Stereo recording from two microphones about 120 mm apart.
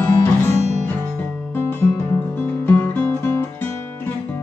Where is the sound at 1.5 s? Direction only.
20° left (ahead or behind).